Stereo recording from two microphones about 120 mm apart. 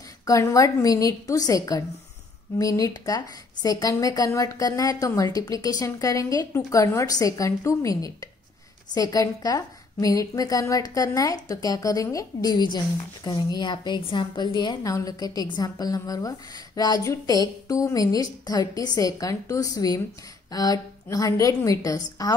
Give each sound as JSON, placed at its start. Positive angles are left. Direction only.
{"t": 0.2, "sound": "a woman's voice", "side_deg": 25}